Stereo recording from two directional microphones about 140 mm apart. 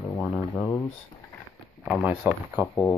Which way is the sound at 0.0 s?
10° left (ahead or behind).